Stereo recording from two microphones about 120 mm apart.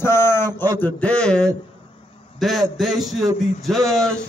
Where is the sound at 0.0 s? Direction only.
20° left (ahead or behind).